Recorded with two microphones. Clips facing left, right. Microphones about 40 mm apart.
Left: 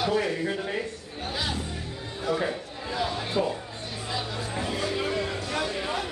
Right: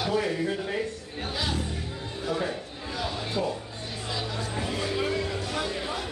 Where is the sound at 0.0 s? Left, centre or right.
Centre.